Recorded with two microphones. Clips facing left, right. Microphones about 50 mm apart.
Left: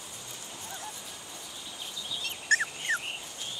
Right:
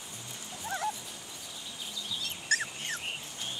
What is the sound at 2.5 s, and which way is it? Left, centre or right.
Dog, left.